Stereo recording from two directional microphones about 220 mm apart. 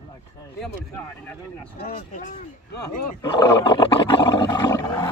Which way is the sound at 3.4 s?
20° left (ahead or behind).